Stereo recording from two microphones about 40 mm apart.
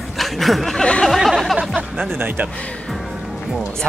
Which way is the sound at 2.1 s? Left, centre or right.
Right.